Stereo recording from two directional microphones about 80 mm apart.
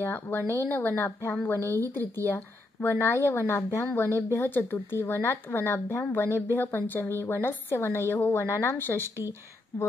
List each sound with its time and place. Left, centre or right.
0.0 s speech: left